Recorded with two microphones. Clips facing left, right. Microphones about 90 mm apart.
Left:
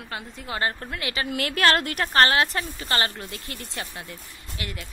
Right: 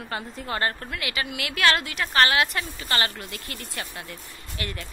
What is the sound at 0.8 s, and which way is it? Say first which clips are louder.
A woman's voice: left 1 dB; 30° left (ahead or behind).